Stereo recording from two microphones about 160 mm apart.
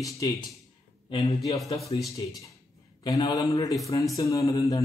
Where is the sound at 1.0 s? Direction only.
35° left (ahead or behind).